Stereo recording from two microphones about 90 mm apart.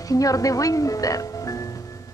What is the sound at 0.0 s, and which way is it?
Music, 40° left (ahead or behind).